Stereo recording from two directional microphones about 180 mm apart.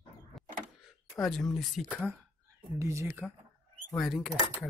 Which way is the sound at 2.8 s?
15° right (ahead or behind).